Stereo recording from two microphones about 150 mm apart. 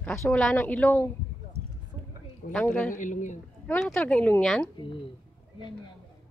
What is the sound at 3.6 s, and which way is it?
Speech, 10° left (ahead or behind).